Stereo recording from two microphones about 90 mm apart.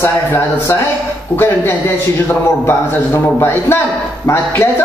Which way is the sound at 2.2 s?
30° left (ahead or behind).